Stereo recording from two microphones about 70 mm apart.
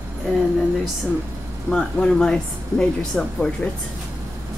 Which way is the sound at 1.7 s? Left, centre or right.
Centre.